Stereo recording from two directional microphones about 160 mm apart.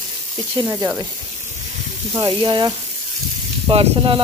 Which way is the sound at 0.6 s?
15° right (ahead or behind).